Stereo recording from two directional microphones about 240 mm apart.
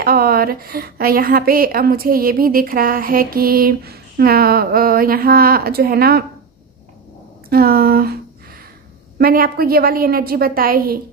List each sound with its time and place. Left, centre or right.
0.0 s a woman's voice: right
7.4 s a woman's voice: right
9.2 s a woman's voice: right